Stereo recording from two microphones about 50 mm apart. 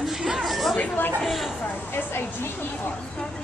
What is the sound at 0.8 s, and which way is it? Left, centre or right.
Speech, left.